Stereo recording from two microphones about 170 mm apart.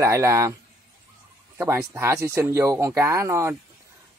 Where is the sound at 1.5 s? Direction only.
15° right (ahead or behind).